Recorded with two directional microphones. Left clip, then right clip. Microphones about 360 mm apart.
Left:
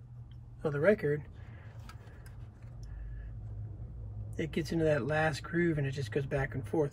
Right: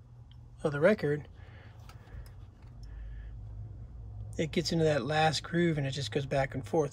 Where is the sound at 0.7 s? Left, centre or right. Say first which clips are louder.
Right 1 dB; centre.